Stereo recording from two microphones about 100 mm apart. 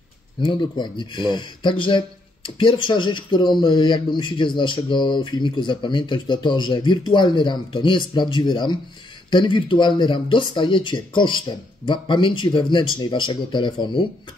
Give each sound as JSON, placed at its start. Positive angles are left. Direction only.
{"t": 0.4, "sound": "speech", "side_deg": 50}